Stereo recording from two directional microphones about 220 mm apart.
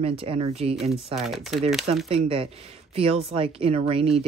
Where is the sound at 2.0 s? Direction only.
25° right (ahead or behind).